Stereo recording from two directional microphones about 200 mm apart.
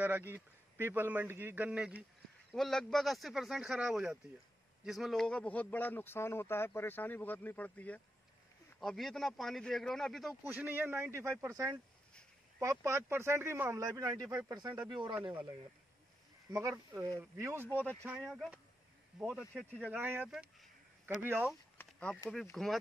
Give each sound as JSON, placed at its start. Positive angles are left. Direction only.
{"t": 0.0, "sound": "a man's voice", "side_deg": -10}
{"t": 10.6, "sound": "a man's voice", "side_deg": -10}
{"t": 16.5, "sound": "a man's voice", "side_deg": -10}
{"t": 17.6, "sound": "speech", "side_deg": 10}
{"t": 18.2, "sound": "speech", "side_deg": 0}
{"t": 19.9, "sound": "speech", "side_deg": -10}
{"t": 21.8, "sound": "a sound", "side_deg": 5}
{"t": 22.3, "sound": "speech", "side_deg": 0}